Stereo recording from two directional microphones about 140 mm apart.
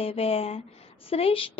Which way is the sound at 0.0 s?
45° left (ahead or behind).